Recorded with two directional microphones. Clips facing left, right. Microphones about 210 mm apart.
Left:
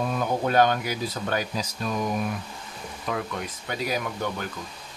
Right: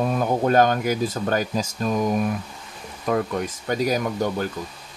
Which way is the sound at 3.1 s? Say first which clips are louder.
Right 7 dB; 45° right (ahead or behind).